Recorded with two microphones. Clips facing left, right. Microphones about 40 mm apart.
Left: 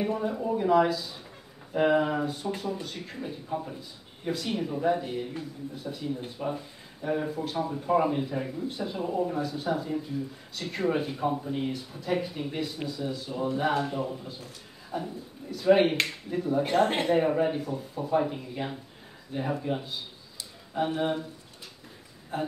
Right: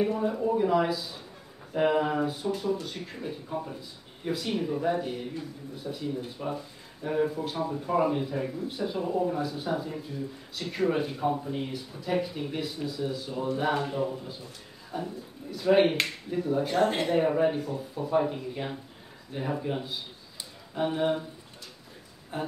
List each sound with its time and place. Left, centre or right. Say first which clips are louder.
0.0 s speech: right 2 dB; centre
16.6 s speech: left 2 dB; left
17.2 s speech: right 1 dB; centre
22.3 s speech: left 2 dB; centre